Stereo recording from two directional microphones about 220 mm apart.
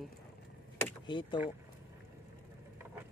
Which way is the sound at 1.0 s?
20° left (ahead or behind).